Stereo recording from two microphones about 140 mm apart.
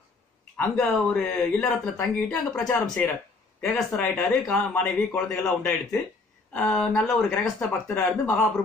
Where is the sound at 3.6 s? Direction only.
5° left (ahead or behind).